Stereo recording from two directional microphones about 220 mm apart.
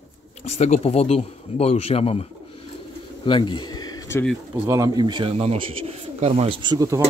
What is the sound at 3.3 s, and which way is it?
Speech, 20° left (ahead or behind).